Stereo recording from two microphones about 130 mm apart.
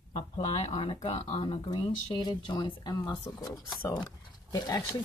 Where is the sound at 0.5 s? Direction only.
55° left (ahead or behind).